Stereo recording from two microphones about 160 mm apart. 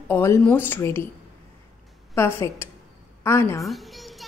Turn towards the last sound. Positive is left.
turn(degrees=0)  # may be behind; listen again after turning